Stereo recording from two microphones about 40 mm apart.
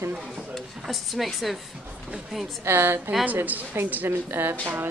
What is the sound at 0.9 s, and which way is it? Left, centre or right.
Speech, centre.